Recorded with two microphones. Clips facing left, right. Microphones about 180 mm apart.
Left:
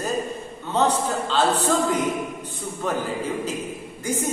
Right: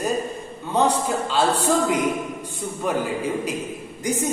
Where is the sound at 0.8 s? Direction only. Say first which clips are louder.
Right 1 dB; 10° right (ahead or behind).